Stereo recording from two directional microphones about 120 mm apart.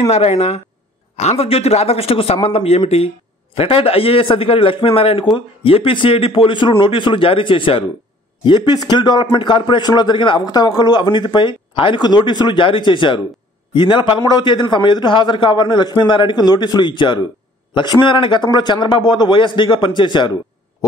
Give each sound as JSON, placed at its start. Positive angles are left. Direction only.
{"t": 0.1, "sound": "a man's voice", "side_deg": 60}